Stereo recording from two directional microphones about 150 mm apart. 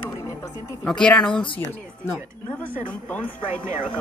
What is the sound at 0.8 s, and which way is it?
Speech, 5° left (ahead or behind).